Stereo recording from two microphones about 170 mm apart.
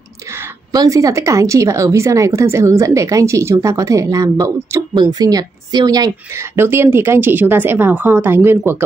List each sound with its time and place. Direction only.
0.7 s speech: 20° right (ahead or behind)